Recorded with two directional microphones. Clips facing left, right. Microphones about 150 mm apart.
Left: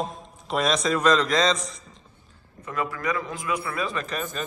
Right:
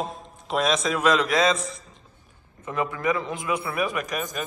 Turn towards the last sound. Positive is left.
turn(degrees=-10)  # may be behind; listen again after turning